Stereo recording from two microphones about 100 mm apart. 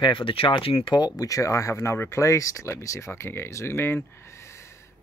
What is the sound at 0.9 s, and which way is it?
Speech, 40° left (ahead or behind).